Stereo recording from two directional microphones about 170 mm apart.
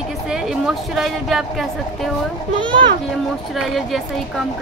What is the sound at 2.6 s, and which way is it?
Speech, 30° right (ahead or behind).